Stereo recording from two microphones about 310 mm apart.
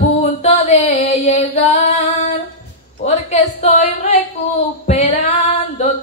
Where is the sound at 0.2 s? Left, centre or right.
Left.